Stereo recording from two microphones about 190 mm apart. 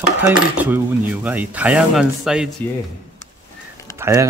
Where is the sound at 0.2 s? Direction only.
10° right (ahead or behind).